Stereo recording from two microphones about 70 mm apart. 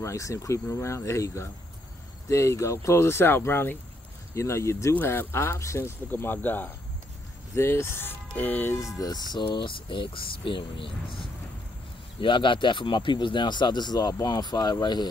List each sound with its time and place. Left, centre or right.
0.0 s speech: left
6.0 s speech: left
8.7 s speech: left
12.6 s speech: left
14.2 s speech: left